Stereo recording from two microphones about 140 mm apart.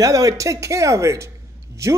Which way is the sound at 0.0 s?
25° right (ahead or behind).